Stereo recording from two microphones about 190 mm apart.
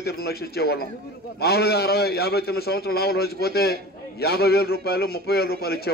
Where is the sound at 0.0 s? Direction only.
55° left (ahead or behind).